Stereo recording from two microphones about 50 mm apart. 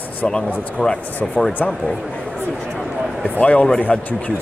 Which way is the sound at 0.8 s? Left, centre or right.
Left.